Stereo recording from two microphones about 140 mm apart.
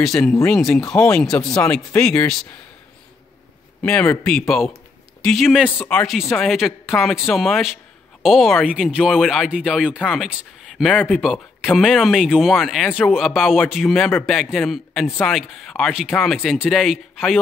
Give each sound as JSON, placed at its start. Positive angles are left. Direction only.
{"t": 0.5, "sound": "speech", "side_deg": 0}
{"t": 1.9, "sound": "speech", "side_deg": 15}
{"t": 3.8, "sound": "speech", "side_deg": 5}
{"t": 5.8, "sound": "speech", "side_deg": 10}